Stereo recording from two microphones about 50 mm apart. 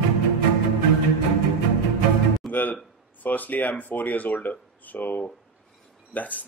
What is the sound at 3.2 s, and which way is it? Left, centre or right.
Speech, left.